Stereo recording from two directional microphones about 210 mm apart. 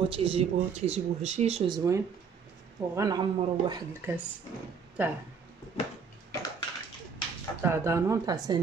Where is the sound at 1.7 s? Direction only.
15° right (ahead or behind).